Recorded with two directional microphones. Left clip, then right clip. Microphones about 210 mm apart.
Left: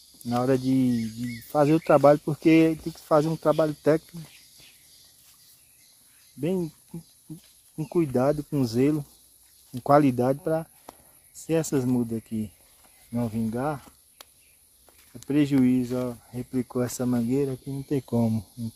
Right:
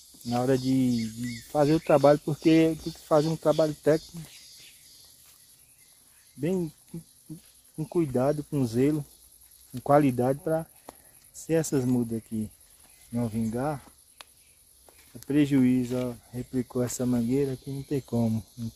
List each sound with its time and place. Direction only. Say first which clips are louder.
0.3 s speech: left 2 dB; 15° left (ahead or behind)
6.4 s speech: left 1 dB; 15° left (ahead or behind)
7.9 s speech: left 2 dB; 20° left (ahead or behind)
17.8 s speech: left 3 dB; 30° left (ahead or behind)